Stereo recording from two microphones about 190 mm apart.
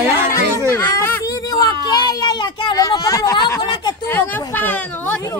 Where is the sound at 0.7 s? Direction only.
15° left (ahead or behind).